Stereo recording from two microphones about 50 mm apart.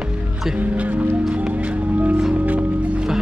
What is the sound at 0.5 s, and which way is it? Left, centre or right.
Speech, right.